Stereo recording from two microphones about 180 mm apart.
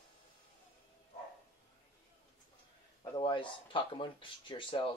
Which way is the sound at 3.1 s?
25° left (ahead or behind).